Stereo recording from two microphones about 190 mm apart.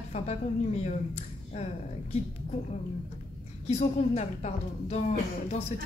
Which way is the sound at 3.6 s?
35° left (ahead or behind).